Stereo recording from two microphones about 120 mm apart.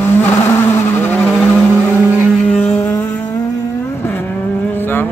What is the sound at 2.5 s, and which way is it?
Music, 15° left (ahead or behind).